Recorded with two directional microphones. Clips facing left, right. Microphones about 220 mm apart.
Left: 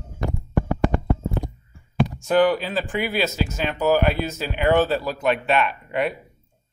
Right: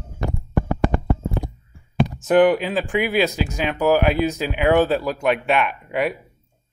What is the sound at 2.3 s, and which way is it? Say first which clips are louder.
Speech: right 4 dB; 20° right (ahead or behind).